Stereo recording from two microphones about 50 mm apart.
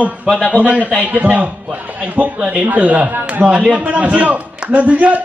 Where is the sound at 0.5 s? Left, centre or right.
Right.